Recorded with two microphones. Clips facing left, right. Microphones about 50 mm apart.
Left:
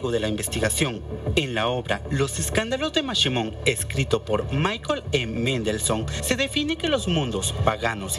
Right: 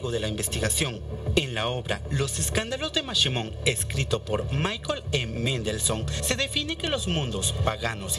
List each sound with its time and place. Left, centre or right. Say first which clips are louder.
0.0 s speech: left 4 dB; centre